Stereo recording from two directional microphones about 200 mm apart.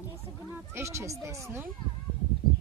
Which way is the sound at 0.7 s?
15° right (ahead or behind).